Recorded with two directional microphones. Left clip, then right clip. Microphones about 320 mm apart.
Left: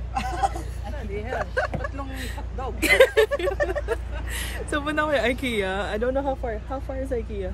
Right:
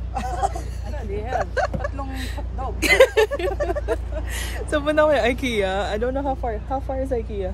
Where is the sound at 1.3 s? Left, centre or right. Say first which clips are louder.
Right 3 dB; centre.